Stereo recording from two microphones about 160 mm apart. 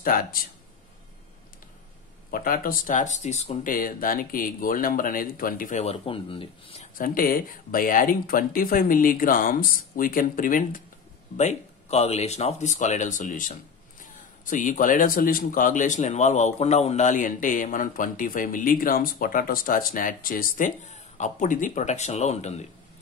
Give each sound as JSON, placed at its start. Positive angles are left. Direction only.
{"t": 0.0, "sound": "speech", "side_deg": 65}
{"t": 2.3, "sound": "speech", "side_deg": 60}
{"t": 3.7, "sound": "speech", "side_deg": 60}
{"t": 7.0, "sound": "speech", "side_deg": 60}
{"t": 11.3, "sound": "speech", "side_deg": 45}